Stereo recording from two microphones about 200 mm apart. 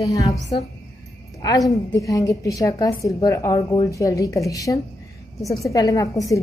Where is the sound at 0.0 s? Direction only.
15° left (ahead or behind).